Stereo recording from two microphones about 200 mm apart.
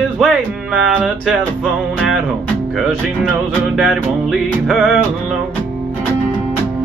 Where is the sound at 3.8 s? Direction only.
Centre (ahead or behind).